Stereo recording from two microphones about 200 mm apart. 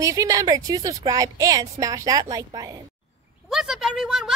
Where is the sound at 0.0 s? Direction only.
15° right (ahead or behind).